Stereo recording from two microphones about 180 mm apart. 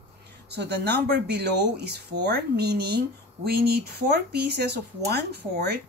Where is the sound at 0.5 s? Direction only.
65° right (ahead or behind).